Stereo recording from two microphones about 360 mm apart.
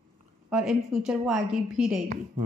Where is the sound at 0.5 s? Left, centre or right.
Centre.